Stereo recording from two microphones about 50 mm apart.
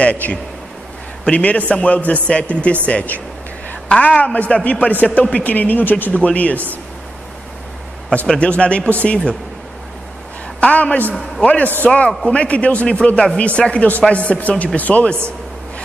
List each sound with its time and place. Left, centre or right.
0.0 s a man's voice: left
8.4 s speech: left
10.6 s speech: left